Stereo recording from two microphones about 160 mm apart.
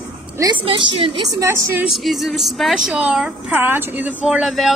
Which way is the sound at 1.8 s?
Centre (ahead or behind).